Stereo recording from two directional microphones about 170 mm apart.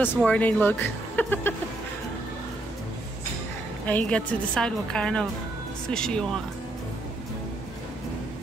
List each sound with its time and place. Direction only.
0.0 s a woman's voice: 10° left (ahead or behind)
3.8 s a woman's voice: 10° left (ahead or behind)